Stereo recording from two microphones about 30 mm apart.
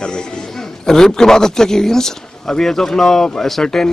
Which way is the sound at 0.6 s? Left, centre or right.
Centre.